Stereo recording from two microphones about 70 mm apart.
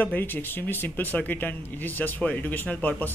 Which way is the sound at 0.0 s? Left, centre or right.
Left.